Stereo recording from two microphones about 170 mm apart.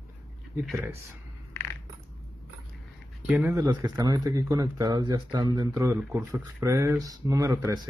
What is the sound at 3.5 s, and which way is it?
Speech, 20° right (ahead or behind).